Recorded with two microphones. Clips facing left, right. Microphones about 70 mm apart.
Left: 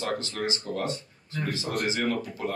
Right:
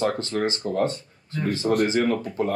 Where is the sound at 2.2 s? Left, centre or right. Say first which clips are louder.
Right 6 dB; right.